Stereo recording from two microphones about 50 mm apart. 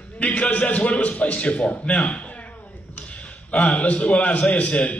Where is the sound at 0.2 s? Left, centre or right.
Left.